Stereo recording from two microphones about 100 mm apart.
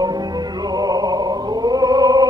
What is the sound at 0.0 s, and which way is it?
Music, 40° right (ahead or behind).